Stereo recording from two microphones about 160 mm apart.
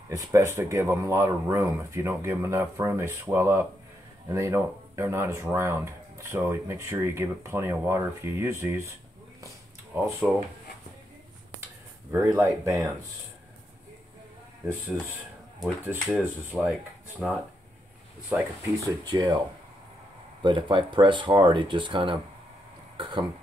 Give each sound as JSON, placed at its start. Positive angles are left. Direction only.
{"t": 0.1, "sound": "speech", "side_deg": -20}
{"t": 9.9, "sound": "speech", "side_deg": -15}
{"t": 12.1, "sound": "speech", "side_deg": -20}
{"t": 15.8, "sound": "speech", "side_deg": -10}
{"t": 18.3, "sound": "speech", "side_deg": -15}
{"t": 18.9, "sound": "speech", "side_deg": -25}
{"t": 20.4, "sound": "speech", "side_deg": -30}